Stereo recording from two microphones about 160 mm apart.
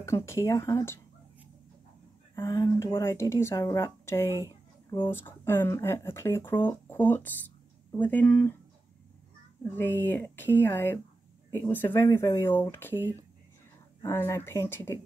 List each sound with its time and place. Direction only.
0.0 s speech: 15° left (ahead or behind)
2.3 s speech: 20° left (ahead or behind)
4.5 s a sound: 30° left (ahead or behind)
5.1 s speech: 15° left (ahead or behind)
9.6 s speech: 15° left (ahead or behind)
14.0 s speech: 15° left (ahead or behind)